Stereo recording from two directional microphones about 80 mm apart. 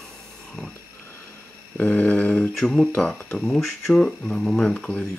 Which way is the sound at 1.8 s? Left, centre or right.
Centre.